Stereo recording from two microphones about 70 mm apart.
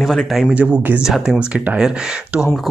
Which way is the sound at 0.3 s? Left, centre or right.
Centre.